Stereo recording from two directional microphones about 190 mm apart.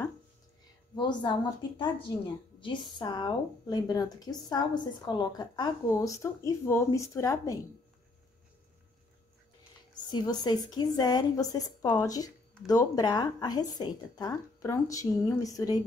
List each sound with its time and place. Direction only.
0.9 s a woman's voice: 25° left (ahead or behind)
10.0 s a woman's voice: 20° left (ahead or behind)